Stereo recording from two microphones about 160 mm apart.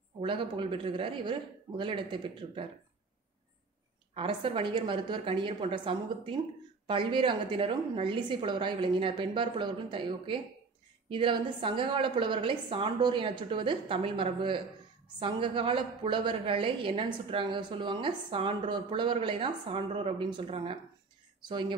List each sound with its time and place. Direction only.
0.2 s a woman's voice: 30° right (ahead or behind)
4.1 s a woman's voice: 35° right (ahead or behind)